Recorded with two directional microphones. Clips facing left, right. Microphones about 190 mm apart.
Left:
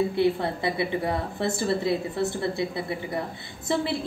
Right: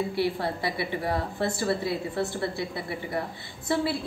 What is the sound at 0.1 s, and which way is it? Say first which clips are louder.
A woman's voice: left 4 dB; 20° left (ahead or behind).